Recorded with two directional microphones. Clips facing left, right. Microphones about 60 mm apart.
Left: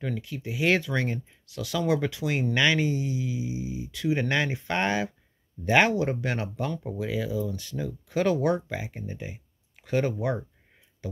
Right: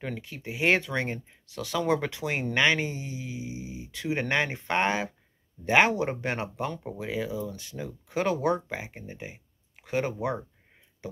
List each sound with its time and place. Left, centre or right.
0.0 s speech: right